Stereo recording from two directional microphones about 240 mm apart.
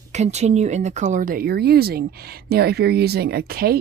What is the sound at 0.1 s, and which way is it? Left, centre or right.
Speech, right.